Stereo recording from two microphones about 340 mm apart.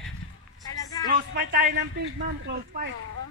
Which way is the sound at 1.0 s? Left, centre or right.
Right.